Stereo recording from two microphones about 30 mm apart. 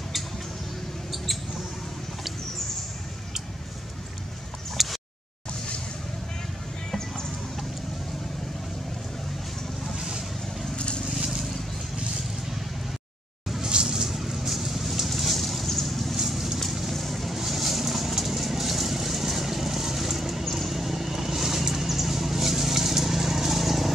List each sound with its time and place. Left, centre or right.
1.1 s mouse: centre
4.8 s a sound: centre
6.9 s a sound: centre
9.9 s boat: right
11.1 s a sound: centre
13.6 s music: right
14.1 s vehicle: centre
16.3 s vehicle: centre
16.9 s vehicle: centre